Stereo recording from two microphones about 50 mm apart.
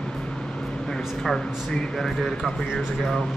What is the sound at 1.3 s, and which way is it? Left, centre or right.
Speech, centre.